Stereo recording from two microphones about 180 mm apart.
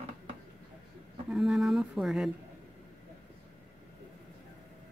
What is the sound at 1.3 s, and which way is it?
Speech, centre (ahead or behind).